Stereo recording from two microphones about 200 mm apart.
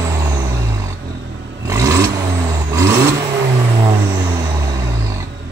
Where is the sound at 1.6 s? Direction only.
15° right (ahead or behind).